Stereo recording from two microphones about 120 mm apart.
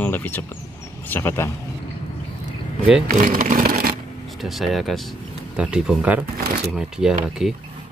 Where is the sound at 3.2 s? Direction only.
90° right.